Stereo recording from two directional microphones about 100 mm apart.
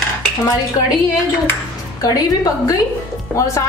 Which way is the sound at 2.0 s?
35° left (ahead or behind).